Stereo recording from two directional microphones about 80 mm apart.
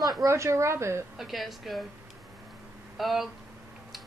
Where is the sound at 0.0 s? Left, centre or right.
Right.